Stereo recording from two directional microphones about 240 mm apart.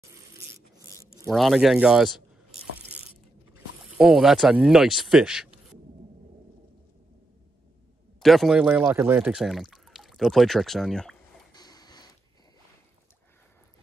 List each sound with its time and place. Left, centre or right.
1.3 s speech: centre
3.5 s speech: centre
8.2 s speech: centre
11.5 s printer: centre